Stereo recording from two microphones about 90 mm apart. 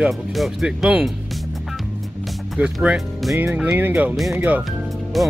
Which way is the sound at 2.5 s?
10° right (ahead or behind).